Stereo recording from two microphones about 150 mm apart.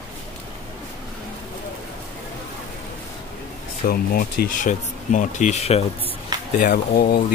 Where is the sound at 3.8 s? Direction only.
75° left (ahead or behind); by 5.8 s 45° left (ahead or behind).